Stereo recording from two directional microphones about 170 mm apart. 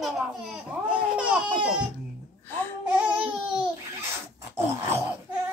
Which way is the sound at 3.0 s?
5° right (ahead or behind).